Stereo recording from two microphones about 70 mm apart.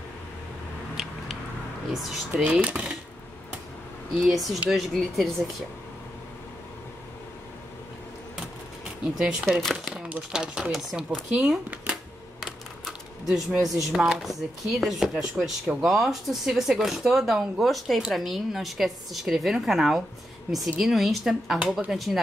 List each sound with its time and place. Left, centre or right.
1.9 s speech: centre
2.4 s speech: right
4.3 s speech: centre
9.5 s speech: centre
9.9 s a sound: centre
10.3 s speech: centre
11.7 s a sound: right
12.4 s typewriter: centre
13.3 s speech: centre